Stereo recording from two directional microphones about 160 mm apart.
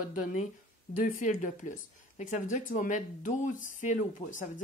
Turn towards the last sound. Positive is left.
turn(degrees=55)  # may be behind; listen again after turning